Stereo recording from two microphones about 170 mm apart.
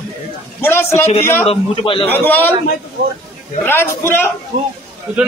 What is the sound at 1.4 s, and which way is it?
Speech, 35° left (ahead or behind).